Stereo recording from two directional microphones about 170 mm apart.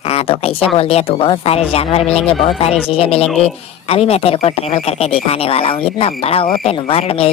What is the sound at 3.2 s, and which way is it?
Speech, 5° left (ahead or behind).